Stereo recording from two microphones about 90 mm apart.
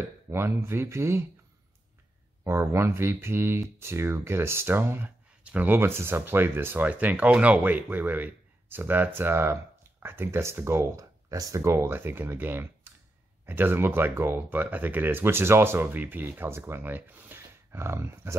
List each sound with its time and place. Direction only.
0.3 s speech: 30° right (ahead or behind)
2.4 s speech: 30° right (ahead or behind)